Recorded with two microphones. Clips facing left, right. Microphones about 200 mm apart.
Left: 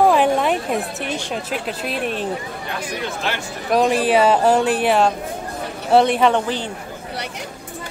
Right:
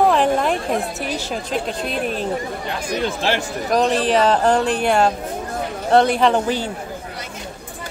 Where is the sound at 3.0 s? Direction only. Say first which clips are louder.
Right 6 dB; 30° right (ahead or behind).